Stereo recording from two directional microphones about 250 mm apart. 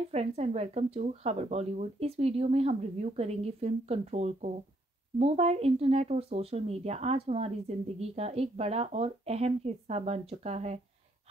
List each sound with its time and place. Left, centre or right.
0.1 s speech: right